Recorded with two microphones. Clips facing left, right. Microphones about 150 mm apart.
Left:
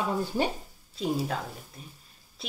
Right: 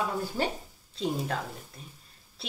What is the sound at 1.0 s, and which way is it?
Speech, 5° left (ahead or behind).